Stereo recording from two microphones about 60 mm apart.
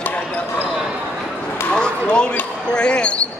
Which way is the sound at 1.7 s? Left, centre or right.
Centre.